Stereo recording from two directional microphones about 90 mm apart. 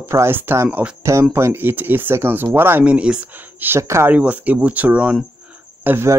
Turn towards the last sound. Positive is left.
turn(degrees=-20)  # may be behind; listen again after turning